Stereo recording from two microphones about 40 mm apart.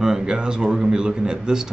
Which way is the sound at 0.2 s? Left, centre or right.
Right.